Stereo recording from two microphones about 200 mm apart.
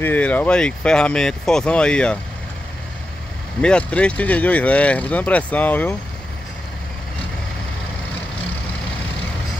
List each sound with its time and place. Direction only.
0.0 s speech: 10° left (ahead or behind)
3.6 s speech: 5° left (ahead or behind)